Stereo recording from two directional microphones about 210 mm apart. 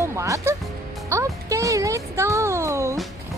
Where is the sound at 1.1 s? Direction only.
15° right (ahead or behind).